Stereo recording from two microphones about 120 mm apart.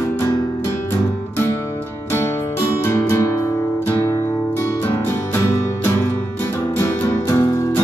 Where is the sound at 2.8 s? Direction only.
20° left (ahead or behind).